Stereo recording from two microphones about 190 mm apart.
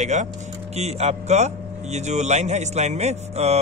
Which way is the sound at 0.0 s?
40° right (ahead or behind).